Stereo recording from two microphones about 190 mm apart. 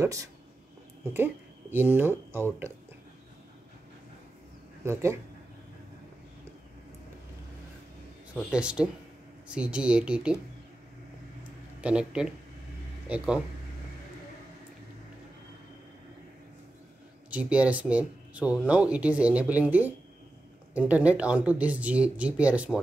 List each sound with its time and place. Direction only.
0.0 s speech: 15° right (ahead or behind)
4.8 s speech: 15° right (ahead or behind)
8.4 s speech: 5° right (ahead or behind)
11.8 s speech: 5° right (ahead or behind)
17.3 s speech: 5° right (ahead or behind)